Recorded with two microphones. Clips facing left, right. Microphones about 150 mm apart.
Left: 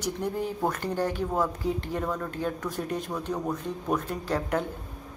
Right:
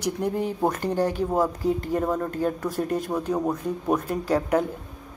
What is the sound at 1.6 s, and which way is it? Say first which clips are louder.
Speech: right 5 dB; 45° right (ahead or behind).